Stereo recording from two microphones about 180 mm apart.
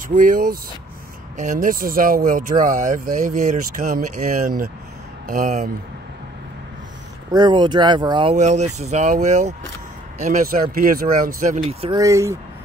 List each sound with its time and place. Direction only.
0.1 s speech: 50° right (ahead or behind)
7.3 s speech: 25° right (ahead or behind)
8.4 s speech: 40° right (ahead or behind)
11.8 s speech: 20° right (ahead or behind)